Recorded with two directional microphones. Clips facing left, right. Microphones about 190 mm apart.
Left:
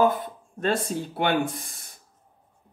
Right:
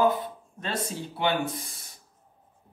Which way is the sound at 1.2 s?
50° left (ahead or behind).